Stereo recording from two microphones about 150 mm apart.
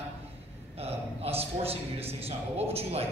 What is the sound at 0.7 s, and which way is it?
A man's voice, 40° right (ahead or behind).